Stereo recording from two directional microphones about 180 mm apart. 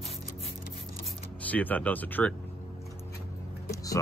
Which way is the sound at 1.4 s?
10° left (ahead or behind).